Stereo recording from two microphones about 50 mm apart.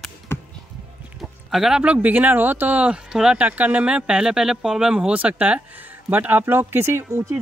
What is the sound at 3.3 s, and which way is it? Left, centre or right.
Speech, right.